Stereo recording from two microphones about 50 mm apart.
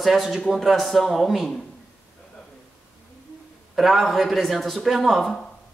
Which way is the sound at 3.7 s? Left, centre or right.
Centre.